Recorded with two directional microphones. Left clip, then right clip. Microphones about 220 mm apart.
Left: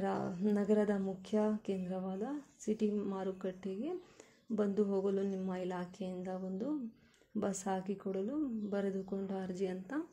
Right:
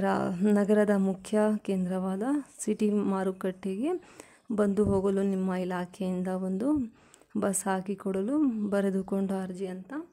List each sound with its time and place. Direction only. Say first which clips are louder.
0.0 s speech: right 9 dB; 20° right (ahead or behind)